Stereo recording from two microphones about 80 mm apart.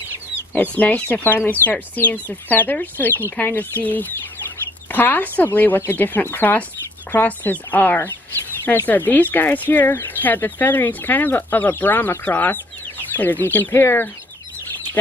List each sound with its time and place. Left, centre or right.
0.6 s speech: centre